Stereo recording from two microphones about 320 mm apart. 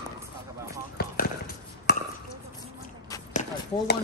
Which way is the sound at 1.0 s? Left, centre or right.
Left.